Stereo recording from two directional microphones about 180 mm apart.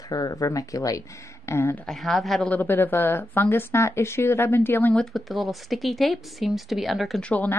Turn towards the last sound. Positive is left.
turn(degrees=10)  # may be behind; listen again after turning